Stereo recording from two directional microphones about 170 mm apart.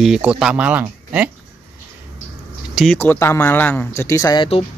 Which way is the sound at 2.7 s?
Centre (ahead or behind).